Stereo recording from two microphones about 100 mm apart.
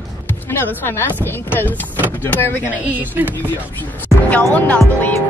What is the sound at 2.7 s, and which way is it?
Speech, 15° right (ahead or behind).